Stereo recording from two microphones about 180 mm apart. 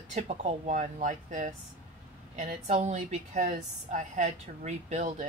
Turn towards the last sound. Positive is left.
turn(degrees=-40)  # may be behind; listen again after turning